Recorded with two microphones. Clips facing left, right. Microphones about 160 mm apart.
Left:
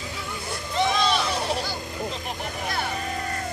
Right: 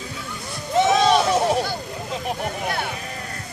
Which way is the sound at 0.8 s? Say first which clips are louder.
Right 6 dB; 65° right (ahead or behind).